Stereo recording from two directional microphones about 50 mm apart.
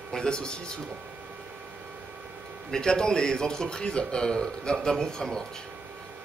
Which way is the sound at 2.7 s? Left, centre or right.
Centre.